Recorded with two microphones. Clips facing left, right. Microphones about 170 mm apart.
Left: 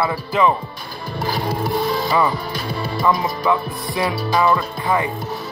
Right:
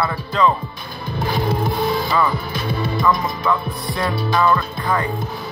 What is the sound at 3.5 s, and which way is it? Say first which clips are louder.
Music: left 1 dB; 10° left (ahead or behind).